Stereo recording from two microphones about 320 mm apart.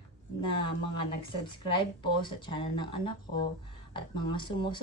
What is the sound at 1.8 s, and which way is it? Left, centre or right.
Speech, centre.